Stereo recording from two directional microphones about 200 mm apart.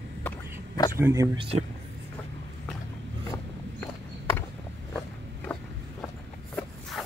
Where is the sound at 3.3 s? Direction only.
10° left (ahead or behind).